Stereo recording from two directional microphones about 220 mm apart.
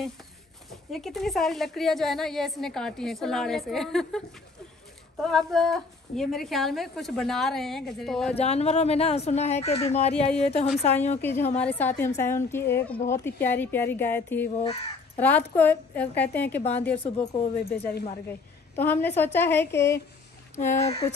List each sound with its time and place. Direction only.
0.9 s a woman's voice: centre (ahead or behind)
8.3 s speech: 30° left (ahead or behind)
11.1 s a woman's voice: 10° left (ahead or behind)
14.5 s speech: 30° left (ahead or behind)
15.1 s a woman's voice: 5° left (ahead or behind)
18.8 s a woman's voice: 10° left (ahead or behind)
20.8 s speech: 25° left (ahead or behind)